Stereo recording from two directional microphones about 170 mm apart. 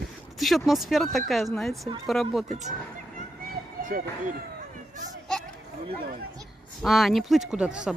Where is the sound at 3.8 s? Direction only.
50° right (ahead or behind).